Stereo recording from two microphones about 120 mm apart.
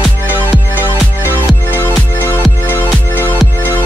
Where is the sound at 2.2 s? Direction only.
15° left (ahead or behind).